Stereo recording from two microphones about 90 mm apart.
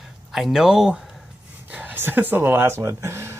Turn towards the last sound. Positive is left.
turn(degrees=-30)  # may be behind; listen again after turning